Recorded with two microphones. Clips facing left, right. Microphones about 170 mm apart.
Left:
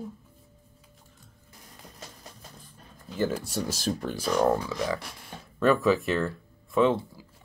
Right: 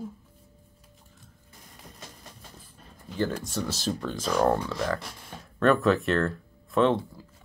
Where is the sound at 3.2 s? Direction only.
10° left (ahead or behind).